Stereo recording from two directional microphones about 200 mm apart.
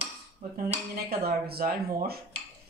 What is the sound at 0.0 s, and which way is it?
Cutlery, 35° right (ahead or behind).